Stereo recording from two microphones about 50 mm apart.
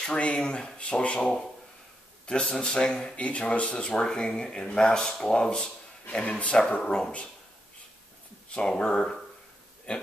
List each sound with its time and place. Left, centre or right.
0.0 s speech: left
3.3 s speech: left
8.5 s speech: centre